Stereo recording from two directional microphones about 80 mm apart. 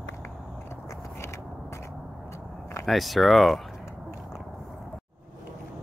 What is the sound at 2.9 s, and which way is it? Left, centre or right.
Speech, centre.